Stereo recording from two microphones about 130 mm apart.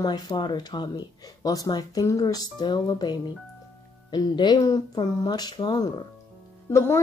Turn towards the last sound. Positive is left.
turn(degrees=20)  # may be behind; listen again after turning